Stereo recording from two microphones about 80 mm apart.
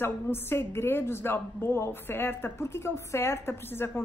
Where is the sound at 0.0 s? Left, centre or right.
Left.